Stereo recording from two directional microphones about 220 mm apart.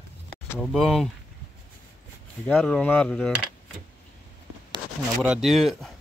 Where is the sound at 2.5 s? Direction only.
5° left (ahead or behind).